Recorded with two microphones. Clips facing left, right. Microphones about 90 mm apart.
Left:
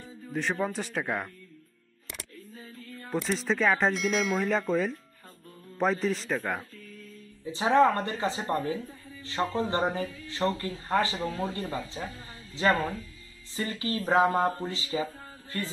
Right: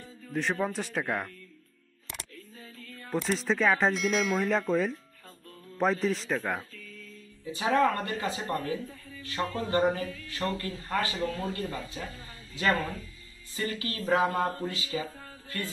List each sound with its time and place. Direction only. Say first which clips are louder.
0.3 s speech: even; centre (ahead or behind)
3.1 s speech: even; centre (ahead or behind)
7.5 s speech: left 3 dB; 25° left (ahead or behind)
13.6 s speech: left 2 dB; 30° left (ahead or behind)